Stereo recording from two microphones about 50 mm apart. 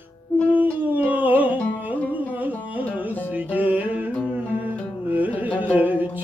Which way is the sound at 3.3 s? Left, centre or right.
Right.